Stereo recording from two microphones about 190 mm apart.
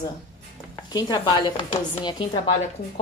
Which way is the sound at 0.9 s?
20° left (ahead or behind).